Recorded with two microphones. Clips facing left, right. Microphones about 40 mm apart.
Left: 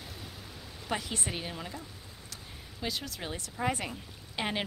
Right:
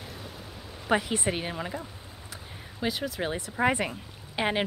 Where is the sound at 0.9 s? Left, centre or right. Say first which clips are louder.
Right 8 dB; right.